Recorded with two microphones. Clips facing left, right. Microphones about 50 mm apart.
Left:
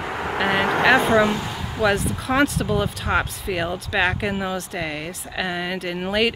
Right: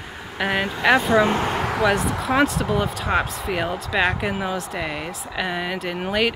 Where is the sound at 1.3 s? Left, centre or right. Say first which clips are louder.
Right 5 dB; right.